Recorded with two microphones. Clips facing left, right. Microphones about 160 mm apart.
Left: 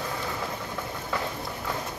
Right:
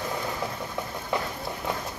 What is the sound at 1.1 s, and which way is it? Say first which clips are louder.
Run: right 2 dB; 20° right (ahead or behind).